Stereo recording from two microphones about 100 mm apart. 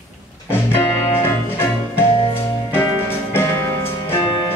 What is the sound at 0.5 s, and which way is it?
Music, 20° left (ahead or behind).